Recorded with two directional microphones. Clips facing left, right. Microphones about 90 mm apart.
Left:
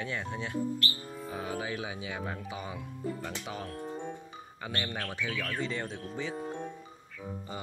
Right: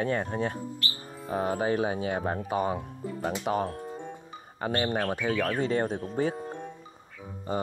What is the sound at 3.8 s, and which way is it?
Music, centre (ahead or behind).